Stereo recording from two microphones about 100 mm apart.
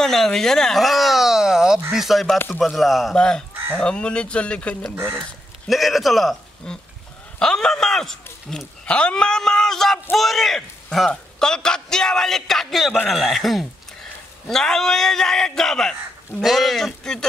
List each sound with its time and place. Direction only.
0.0 s a sound: 5° left (ahead or behind)
1.9 s a man's voice: centre (ahead or behind)
2.3 s speech: 20° left (ahead or behind)
2.6 s a man's voice: centre (ahead or behind)
5.7 s a man's voice: centre (ahead or behind)